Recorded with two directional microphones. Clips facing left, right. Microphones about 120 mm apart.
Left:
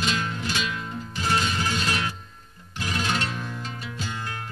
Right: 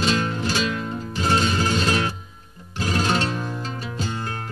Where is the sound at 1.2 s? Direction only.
30° right (ahead or behind).